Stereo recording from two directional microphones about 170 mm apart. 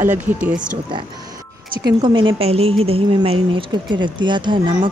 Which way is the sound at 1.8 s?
25° right (ahead or behind).